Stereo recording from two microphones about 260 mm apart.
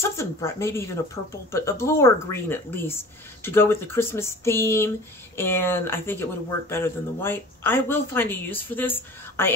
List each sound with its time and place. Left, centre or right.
0.2 s speech: centre